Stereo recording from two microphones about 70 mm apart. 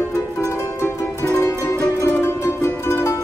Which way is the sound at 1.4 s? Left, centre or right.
Left.